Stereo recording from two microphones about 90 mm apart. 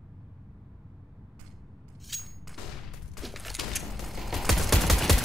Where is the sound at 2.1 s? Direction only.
Centre (ahead or behind).